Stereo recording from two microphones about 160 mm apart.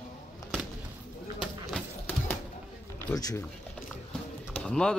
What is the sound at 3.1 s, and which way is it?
Speech, 20° left (ahead or behind).